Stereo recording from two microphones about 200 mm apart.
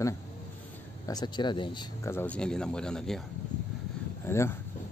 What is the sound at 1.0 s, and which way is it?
Speech, 20° left (ahead or behind).